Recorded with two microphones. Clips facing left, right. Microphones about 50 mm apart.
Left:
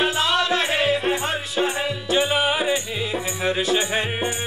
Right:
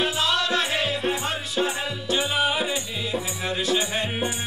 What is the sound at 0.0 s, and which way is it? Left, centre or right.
Music, centre.